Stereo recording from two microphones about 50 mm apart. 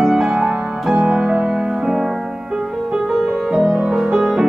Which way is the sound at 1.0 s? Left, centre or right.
Right.